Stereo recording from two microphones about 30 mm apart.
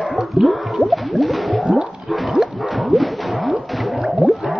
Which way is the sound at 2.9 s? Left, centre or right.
Centre.